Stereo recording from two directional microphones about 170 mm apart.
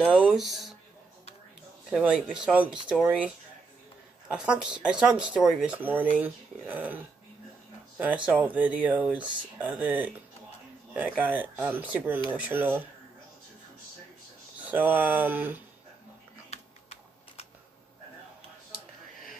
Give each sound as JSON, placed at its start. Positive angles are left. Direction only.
{"t": 0.0, "sound": "speech", "side_deg": -5}
{"t": 1.9, "sound": "speech", "side_deg": -5}
{"t": 4.3, "sound": "speech", "side_deg": -5}
{"t": 8.0, "sound": "speech", "side_deg": -10}
{"t": 14.6, "sound": "speech", "side_deg": -10}
{"t": 16.4, "sound": "typing", "side_deg": 40}